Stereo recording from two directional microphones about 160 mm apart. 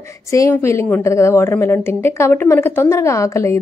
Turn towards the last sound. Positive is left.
turn(degrees=15)  # may be behind; listen again after turning